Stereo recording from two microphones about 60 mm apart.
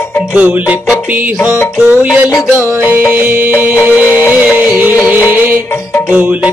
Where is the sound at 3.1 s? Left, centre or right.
Right.